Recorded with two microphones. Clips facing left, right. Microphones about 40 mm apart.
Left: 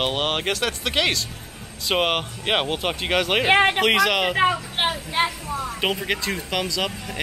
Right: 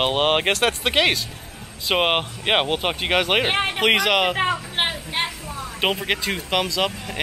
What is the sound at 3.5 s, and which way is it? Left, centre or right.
Speech, left.